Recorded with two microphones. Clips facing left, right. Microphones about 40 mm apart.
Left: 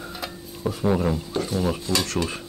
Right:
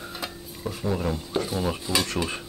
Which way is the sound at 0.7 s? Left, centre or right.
Centre.